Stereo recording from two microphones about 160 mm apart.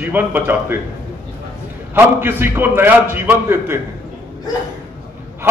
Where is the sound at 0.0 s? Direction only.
10° right (ahead or behind).